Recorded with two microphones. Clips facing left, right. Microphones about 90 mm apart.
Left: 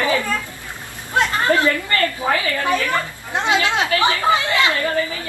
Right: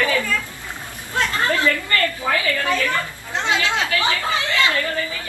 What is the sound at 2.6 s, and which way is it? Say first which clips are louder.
Speech: left 2 dB; 20° left (ahead or behind).